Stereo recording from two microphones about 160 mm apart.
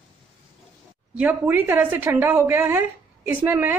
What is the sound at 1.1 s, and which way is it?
A woman's voice, 10° right (ahead or behind).